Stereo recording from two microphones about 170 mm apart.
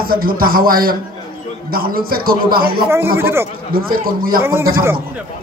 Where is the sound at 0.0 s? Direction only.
60° right (ahead or behind).